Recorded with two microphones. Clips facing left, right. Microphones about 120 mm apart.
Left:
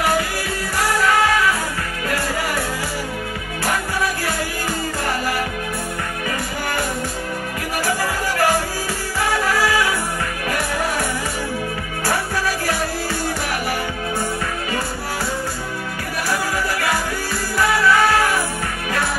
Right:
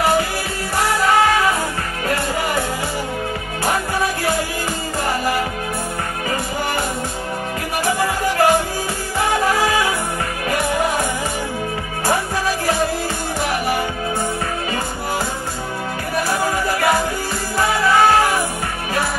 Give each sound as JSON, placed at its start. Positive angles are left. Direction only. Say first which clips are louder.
{"t": 8.4, "sound": "music", "louder": "right 3 dB", "side_deg": -20}
{"t": 17.6, "sound": "music", "louder": "right 1 dB", "side_deg": -25}